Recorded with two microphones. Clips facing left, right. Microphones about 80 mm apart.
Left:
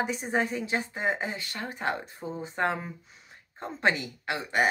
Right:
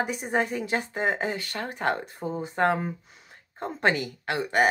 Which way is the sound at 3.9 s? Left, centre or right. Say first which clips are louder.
Right 3 dB; right.